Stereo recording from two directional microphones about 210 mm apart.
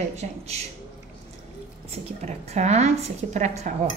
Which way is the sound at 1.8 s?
30° right (ahead or behind).